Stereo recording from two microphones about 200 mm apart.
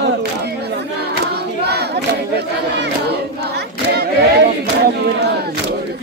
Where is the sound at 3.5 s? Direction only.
55° right (ahead or behind).